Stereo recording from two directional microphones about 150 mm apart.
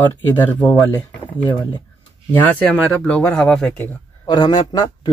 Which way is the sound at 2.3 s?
10° left (ahead or behind).